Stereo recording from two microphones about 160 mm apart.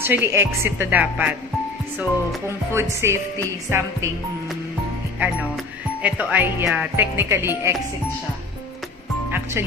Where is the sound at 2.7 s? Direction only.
15° right (ahead or behind).